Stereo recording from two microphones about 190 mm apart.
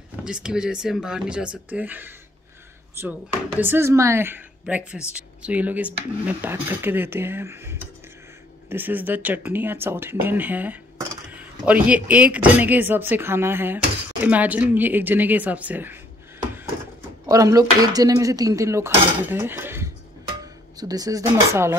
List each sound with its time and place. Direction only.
0.1 s speech: 5° right (ahead or behind)
17.3 s speech: 15° right (ahead or behind)